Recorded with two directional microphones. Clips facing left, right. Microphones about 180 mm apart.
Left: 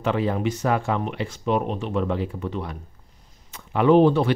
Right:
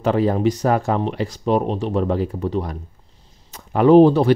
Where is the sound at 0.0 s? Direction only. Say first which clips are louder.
Right 6 dB; 40° right (ahead or behind).